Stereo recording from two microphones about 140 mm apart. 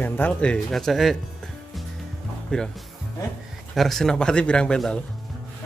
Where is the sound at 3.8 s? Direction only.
Centre (ahead or behind).